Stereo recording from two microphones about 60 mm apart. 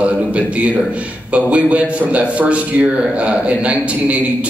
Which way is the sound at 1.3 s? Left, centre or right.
Right.